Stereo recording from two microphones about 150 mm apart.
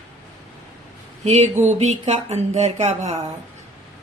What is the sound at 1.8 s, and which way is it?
A woman's voice, 45° right (ahead or behind).